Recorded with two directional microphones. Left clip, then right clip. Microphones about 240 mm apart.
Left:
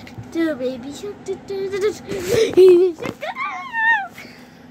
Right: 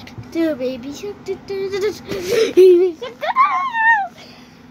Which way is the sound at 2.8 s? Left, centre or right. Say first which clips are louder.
Even; centre.